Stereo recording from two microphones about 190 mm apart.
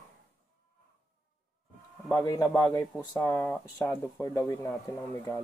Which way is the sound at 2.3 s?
15° left (ahead or behind).